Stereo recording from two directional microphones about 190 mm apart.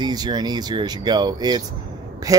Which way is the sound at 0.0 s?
20° right (ahead or behind).